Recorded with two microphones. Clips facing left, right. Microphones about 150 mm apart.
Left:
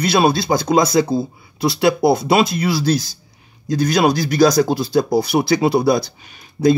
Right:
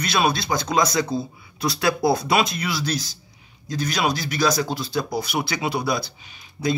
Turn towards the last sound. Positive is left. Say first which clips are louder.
# left 10 dB
turn(degrees=45)  # may be behind; listen again after turning